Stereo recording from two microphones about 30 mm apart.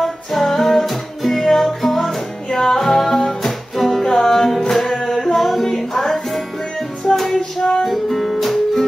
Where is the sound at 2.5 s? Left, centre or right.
Centre.